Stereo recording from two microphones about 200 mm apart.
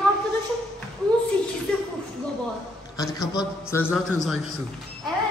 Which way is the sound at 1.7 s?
5° left (ahead or behind).